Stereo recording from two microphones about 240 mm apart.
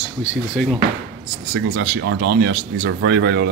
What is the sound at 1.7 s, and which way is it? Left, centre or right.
Speech, right.